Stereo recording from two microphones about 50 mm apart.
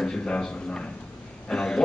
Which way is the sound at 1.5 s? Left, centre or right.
Centre.